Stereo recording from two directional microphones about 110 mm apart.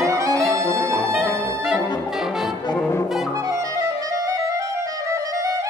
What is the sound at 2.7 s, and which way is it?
Brass instrument, 20° left (ahead or behind).